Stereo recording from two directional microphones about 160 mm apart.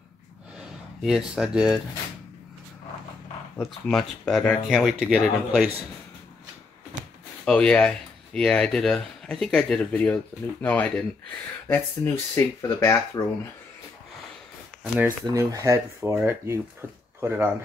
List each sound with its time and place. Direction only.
0.6 s speech: 5° right (ahead or behind)
3.5 s speech: 5° left (ahead or behind)
7.4 s speech: 5° left (ahead or behind)
14.8 s speech: 15° right (ahead or behind)